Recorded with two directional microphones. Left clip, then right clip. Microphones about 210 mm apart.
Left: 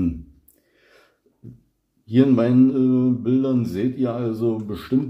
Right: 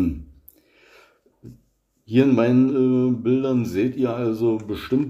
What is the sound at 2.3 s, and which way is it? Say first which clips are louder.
Speech: left 1 dB; 25° right (ahead or behind).